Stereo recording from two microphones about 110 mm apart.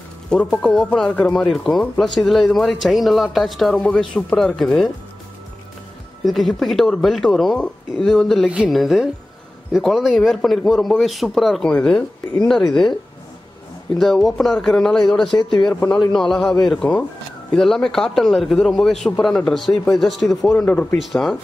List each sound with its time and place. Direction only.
0.3 s speech: 10° left (ahead or behind)
6.2 s speech: centre (ahead or behind)
13.9 s speech: centre (ahead or behind)
15.2 s speech: 45° left (ahead or behind)
15.7 s speech: 15° left (ahead or behind)
16.0 s speech: 5° left (ahead or behind)
20.5 s speech: 15° left (ahead or behind)
21.0 s speech: centre (ahead or behind)